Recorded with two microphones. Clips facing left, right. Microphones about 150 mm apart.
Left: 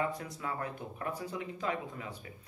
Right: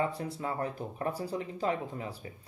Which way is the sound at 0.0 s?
30° right (ahead or behind).